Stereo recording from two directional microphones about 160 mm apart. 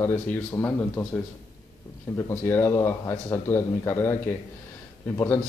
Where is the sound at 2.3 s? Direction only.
15° left (ahead or behind).